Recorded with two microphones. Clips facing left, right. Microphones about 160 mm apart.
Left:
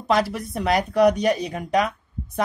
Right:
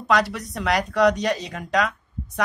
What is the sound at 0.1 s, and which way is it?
A woman's voice, 25° left (ahead or behind).